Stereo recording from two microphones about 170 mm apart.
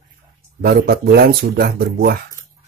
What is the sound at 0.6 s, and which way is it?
Speech, 65° right (ahead or behind).